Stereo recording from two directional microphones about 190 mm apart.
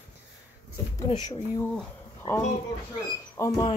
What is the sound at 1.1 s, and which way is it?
Speech, 20° left (ahead or behind).